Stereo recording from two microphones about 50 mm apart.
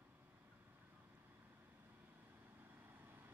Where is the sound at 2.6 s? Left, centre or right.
Right.